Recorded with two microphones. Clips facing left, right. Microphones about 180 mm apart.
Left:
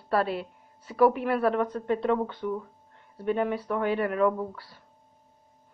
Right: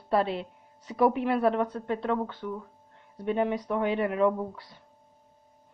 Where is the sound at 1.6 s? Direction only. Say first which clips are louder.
Left 2 dB; 10° right (ahead or behind).